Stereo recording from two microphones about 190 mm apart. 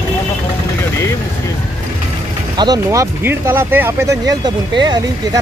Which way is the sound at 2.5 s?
20° right (ahead or behind).